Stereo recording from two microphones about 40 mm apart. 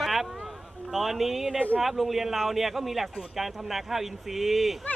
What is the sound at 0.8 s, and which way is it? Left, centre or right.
A man's voice, centre.